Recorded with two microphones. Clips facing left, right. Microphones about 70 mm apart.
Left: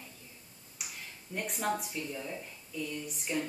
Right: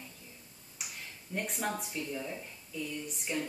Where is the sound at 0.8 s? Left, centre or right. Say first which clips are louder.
Even; centre.